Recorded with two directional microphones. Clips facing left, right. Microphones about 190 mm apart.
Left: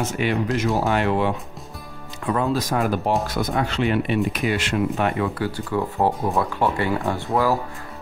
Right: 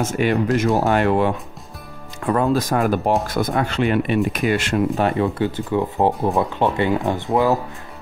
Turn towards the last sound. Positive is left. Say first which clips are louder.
# right 3 dB
turn(degrees=-20)  # may be behind; listen again after turning